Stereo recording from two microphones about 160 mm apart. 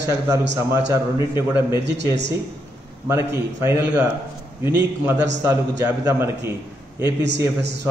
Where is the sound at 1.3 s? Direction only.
15° right (ahead or behind).